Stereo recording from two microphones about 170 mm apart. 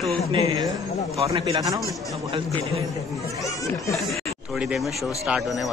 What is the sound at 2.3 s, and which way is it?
Speech, 35° right (ahead or behind).